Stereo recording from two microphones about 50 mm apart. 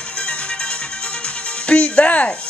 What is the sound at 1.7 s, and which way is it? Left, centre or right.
Speech, left.